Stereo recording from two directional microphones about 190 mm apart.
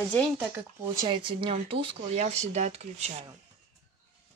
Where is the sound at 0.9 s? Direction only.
25° right (ahead or behind).